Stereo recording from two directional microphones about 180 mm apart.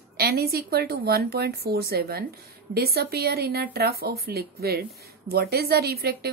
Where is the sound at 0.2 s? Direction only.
60° right (ahead or behind).